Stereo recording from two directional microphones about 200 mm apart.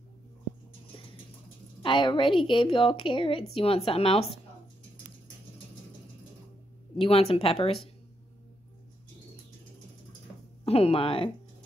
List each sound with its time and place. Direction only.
1.8 s a woman's voice: 25° left (ahead or behind)
7.0 s a woman's voice: 30° left (ahead or behind)
10.6 s a woman's voice: 30° left (ahead or behind)